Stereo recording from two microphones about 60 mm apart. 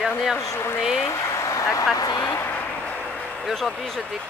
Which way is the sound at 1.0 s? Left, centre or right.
Left.